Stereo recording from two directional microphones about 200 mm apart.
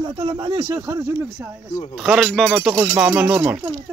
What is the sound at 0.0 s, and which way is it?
Speech, 25° right (ahead or behind).